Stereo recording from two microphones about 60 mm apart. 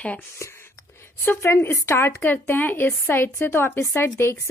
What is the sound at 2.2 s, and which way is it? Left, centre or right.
A woman's voice, left.